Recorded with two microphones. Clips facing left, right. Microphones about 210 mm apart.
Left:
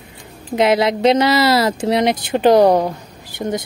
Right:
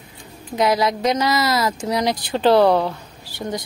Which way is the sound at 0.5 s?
25° left (ahead or behind).